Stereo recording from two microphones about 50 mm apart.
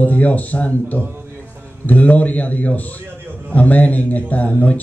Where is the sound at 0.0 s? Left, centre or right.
Left.